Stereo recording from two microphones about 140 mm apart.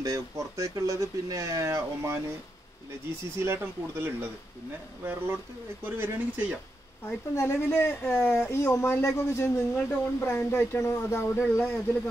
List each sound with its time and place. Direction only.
0.0 s speech: 25° right (ahead or behind)
3.3 s speech: 15° right (ahead or behind)
7.1 s speech: 20° left (ahead or behind)